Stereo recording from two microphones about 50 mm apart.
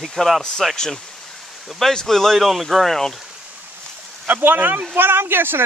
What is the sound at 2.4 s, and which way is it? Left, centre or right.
Speech, centre.